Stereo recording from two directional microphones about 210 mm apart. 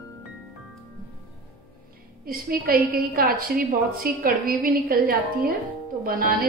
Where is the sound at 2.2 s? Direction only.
45° right (ahead or behind).